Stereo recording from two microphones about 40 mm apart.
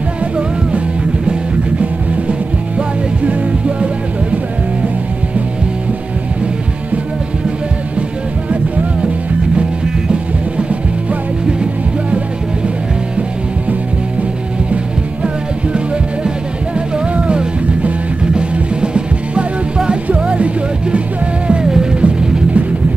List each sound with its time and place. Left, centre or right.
3.6 s music: right
16.7 s music: right
21.5 s music: centre
22.0 s music: right